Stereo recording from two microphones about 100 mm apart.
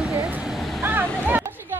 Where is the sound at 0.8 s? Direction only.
20° right (ahead or behind).